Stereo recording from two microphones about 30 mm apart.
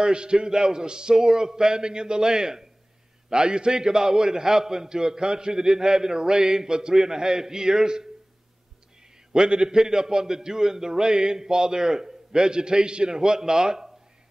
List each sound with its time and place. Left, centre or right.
0.0 s a man's voice: right
9.5 s a man's voice: right